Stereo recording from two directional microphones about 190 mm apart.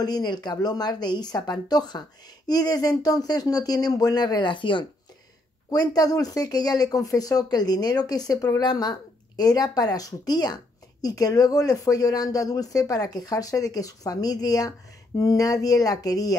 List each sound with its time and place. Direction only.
0.0 s speech: 20° left (ahead or behind)